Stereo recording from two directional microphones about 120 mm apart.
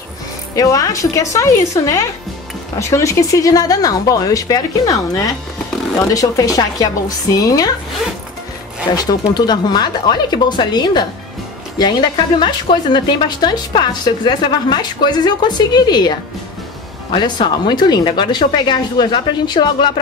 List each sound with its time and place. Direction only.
0.6 s a woman's voice: 30° left (ahead or behind)
8.9 s a woman's voice: 35° left (ahead or behind)
17.1 s a woman's voice: 35° left (ahead or behind)